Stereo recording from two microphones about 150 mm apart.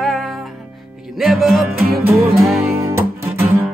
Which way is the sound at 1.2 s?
Centre (ahead or behind).